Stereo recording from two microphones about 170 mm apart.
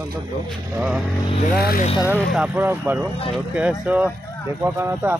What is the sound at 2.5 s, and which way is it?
Speech, 10° right (ahead or behind).